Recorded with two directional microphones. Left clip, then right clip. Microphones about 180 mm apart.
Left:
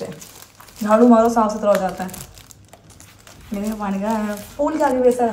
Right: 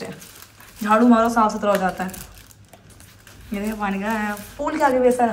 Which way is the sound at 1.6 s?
5° left (ahead or behind).